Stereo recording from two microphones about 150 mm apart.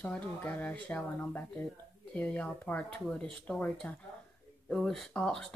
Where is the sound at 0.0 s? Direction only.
10° left (ahead or behind).